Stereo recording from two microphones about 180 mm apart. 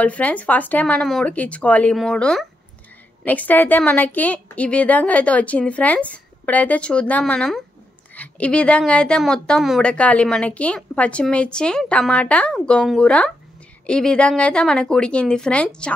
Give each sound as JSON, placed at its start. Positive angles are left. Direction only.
{"t": 0.0, "sound": "a woman's voice", "side_deg": 10}